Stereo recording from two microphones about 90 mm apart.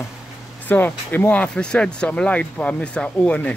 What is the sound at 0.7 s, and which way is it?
Speech, 20° left (ahead or behind).